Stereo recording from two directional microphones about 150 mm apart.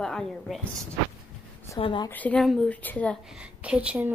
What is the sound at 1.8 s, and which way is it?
Speech, 30° left (ahead or behind).